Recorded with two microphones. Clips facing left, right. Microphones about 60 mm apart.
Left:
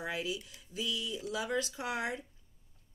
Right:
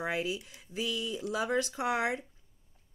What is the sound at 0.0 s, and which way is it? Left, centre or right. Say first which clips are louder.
Speech: right 4 dB; right.